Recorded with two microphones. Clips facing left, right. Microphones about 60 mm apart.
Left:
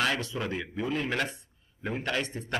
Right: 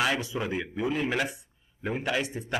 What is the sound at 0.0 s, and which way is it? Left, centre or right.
Speech, centre.